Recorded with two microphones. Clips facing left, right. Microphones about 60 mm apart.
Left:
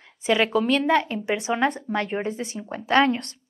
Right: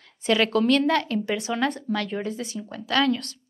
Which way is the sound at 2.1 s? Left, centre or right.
Left.